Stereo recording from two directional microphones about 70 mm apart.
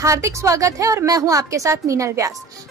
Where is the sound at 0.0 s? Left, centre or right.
Right.